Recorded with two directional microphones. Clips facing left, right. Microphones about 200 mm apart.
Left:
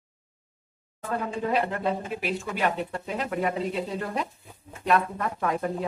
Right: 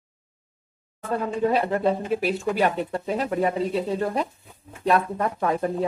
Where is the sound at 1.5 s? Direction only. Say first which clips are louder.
Right 1 dB; 35° right (ahead or behind).